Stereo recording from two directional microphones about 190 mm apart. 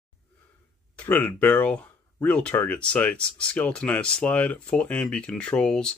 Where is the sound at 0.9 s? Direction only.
10° left (ahead or behind).